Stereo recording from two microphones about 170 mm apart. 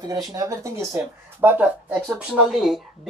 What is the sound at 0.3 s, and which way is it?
Speech, 20° right (ahead or behind).